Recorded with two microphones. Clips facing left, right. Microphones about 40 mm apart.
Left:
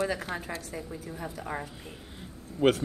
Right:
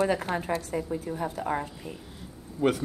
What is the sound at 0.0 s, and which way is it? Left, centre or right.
Speech, right.